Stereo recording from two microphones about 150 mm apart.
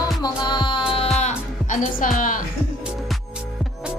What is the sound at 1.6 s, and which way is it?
Speech, 60° left (ahead or behind).